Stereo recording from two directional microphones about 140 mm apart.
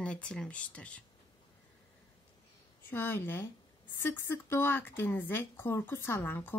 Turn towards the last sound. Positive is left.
turn(degrees=15)  # may be behind; listen again after turning